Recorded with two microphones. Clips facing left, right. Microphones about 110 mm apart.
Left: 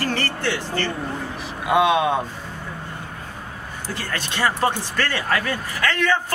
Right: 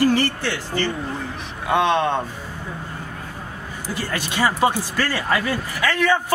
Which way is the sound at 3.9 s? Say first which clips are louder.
Right 3 dB; 10° right (ahead or behind).